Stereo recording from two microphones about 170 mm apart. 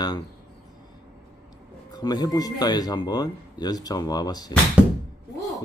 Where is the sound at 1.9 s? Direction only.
25° left (ahead or behind).